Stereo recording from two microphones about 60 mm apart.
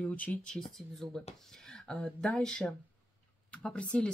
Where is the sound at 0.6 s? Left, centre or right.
Centre.